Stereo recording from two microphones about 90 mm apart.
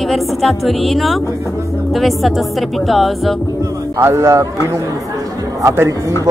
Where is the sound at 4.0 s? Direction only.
30° right (ahead or behind).